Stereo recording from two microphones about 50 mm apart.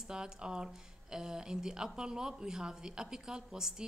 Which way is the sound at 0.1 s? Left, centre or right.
Centre.